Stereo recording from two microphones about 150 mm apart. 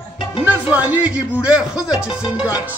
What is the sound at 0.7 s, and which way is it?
Speech, 10° right (ahead or behind).